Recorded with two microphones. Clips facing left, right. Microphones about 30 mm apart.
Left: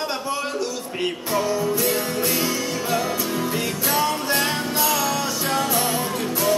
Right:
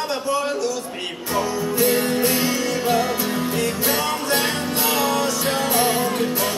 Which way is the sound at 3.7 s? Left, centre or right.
Centre.